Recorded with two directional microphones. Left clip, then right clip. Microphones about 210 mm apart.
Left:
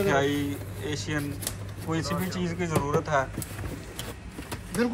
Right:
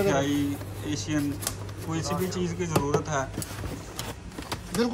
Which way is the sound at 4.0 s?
5° right (ahead or behind).